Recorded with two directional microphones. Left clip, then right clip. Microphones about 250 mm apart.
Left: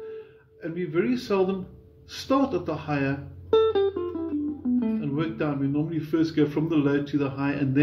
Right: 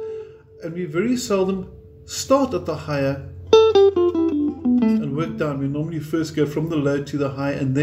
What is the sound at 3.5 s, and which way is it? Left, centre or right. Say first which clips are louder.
Music: right 9 dB; right.